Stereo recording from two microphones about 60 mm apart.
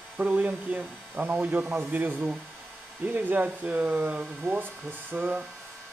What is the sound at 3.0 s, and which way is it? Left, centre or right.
Speech, right.